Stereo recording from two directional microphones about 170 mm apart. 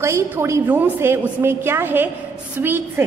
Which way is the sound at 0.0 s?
15° right (ahead or behind).